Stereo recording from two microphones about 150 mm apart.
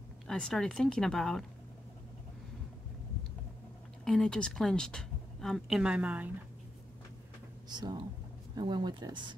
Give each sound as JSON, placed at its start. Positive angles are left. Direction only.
{"t": 0.3, "sound": "a woman's voice", "side_deg": 5}
{"t": 4.0, "sound": "a woman's voice", "side_deg": 5}
{"t": 7.7, "sound": "speech", "side_deg": -30}